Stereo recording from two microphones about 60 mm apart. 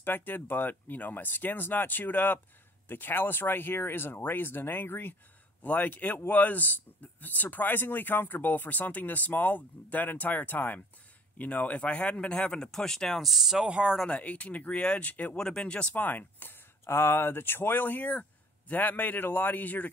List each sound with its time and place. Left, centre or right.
0.0 s a man's voice: left; by 13.9 s centre
14.0 s a man's voice: left
15.3 s a man's voice: centre